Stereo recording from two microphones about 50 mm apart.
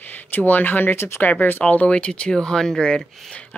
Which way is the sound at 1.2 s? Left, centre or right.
Left.